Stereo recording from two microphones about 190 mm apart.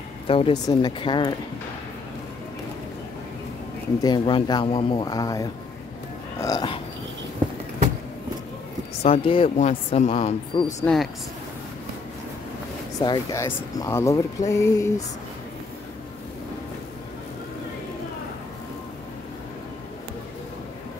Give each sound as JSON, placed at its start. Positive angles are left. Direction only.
{"t": 0.3, "sound": "speech", "side_deg": 25}
{"t": 4.0, "sound": "speech", "side_deg": 20}
{"t": 9.0, "sound": "speech", "side_deg": 30}
{"t": 10.5, "sound": "speech", "side_deg": 25}
{"t": 13.0, "sound": "speech", "side_deg": 20}